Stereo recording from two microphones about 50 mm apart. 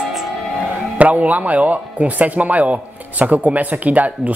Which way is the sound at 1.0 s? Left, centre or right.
Right.